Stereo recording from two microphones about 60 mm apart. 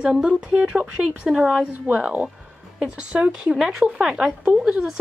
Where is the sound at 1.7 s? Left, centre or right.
Right.